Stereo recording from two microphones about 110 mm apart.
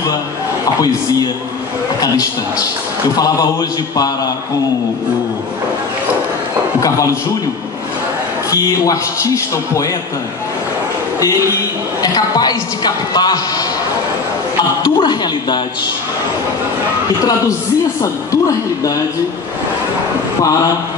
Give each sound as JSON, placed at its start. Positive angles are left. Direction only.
{"t": 8.5, "sound": "speech", "side_deg": 35}
{"t": 11.1, "sound": "speech", "side_deg": 30}
{"t": 14.8, "sound": "speech", "side_deg": 40}